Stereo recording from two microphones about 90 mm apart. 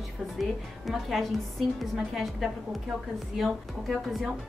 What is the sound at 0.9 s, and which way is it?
Music, 5° right (ahead or behind).